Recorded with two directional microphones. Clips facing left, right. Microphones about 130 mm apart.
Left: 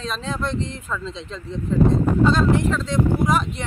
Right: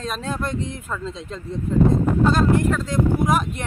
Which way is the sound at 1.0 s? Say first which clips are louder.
Right 1 dB; 45° right (ahead or behind).